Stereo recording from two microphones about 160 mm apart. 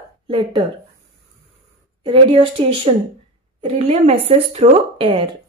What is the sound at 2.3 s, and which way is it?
Speech, 35° right (ahead or behind).